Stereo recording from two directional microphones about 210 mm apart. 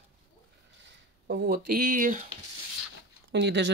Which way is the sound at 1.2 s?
50° right (ahead or behind).